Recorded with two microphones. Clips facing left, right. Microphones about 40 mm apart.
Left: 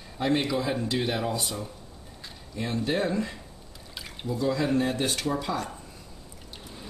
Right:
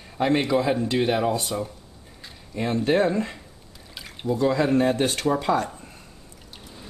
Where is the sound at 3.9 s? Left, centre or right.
Centre.